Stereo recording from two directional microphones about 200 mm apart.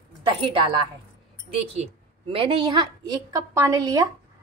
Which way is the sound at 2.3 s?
25° right (ahead or behind).